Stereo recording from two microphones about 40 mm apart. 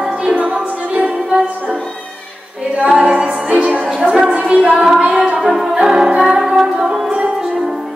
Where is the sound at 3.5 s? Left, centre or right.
Right.